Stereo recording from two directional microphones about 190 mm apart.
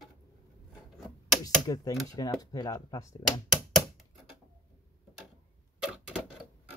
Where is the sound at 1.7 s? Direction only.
20° left (ahead or behind).